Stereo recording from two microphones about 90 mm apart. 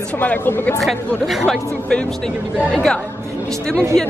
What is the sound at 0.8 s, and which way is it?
Speech, centre (ahead or behind).